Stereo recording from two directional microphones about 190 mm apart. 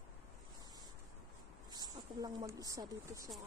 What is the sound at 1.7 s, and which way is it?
Speech, 20° right (ahead or behind).